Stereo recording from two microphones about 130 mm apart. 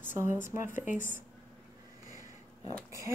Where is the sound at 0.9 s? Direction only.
80° left.